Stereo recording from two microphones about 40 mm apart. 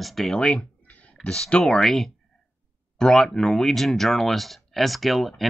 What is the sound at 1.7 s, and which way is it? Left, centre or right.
Speech, centre.